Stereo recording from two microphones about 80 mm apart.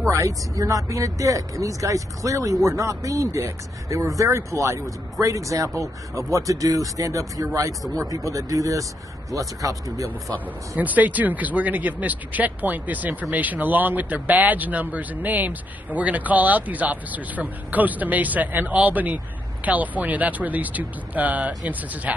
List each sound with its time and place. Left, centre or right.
0.1 s speech: right
10.8 s speech: right